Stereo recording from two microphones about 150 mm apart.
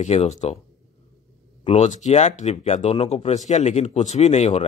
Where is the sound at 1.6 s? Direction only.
50° left (ahead or behind).